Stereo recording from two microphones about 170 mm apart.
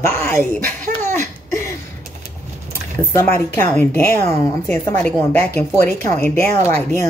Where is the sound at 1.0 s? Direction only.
15° left (ahead or behind).